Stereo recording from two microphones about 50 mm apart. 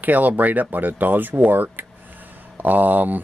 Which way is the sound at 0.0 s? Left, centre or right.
Right.